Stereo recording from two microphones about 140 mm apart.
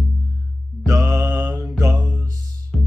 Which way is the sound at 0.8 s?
25° right (ahead or behind).